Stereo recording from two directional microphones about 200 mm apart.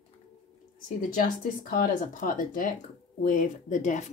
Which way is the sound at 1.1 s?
45° left (ahead or behind).